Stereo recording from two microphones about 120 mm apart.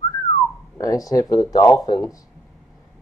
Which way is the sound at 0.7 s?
30° left (ahead or behind).